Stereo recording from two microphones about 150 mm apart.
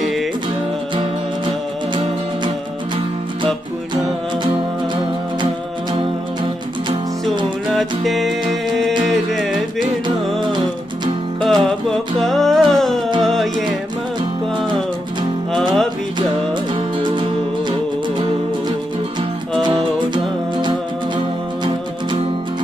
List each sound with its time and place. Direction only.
7.7 s music: centre (ahead or behind)
11.4 s music: centre (ahead or behind)
15.5 s music: centre (ahead or behind)
17.0 s music: 30° right (ahead or behind)
19.6 s music: 30° right (ahead or behind)